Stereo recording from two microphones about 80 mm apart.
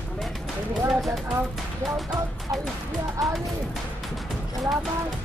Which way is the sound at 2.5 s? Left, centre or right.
Right.